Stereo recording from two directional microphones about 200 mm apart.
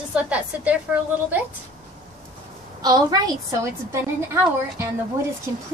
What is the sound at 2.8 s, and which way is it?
A woman's voice, 20° right (ahead or behind).